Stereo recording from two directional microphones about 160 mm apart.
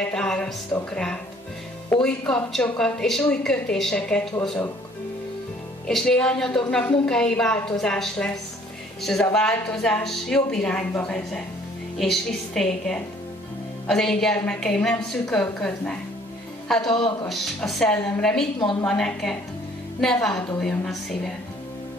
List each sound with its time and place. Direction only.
0.1 s a woman's voice: 5° left (ahead or behind)
5.9 s a woman's voice: 5° left (ahead or behind)
16.9 s speech: 25° left (ahead or behind)
17.3 s a woman's voice: centre (ahead or behind)
18.6 s speech: 25° left (ahead or behind)
18.9 s a woman's voice: centre (ahead or behind)